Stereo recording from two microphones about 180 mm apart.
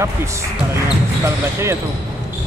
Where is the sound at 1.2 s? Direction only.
15° right (ahead or behind).